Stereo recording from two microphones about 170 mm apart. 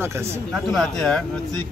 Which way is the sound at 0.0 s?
15° right (ahead or behind).